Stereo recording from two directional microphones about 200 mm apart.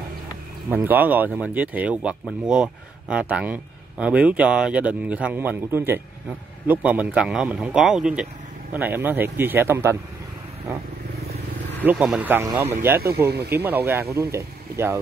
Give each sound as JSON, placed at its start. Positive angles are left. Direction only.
{"t": 0.7, "sound": "a man's voice", "side_deg": -10}
{"t": 11.8, "sound": "a man's voice", "side_deg": -5}